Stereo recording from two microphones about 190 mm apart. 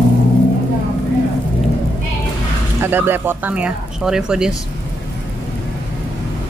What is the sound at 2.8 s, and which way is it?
Speech, 10° right (ahead or behind).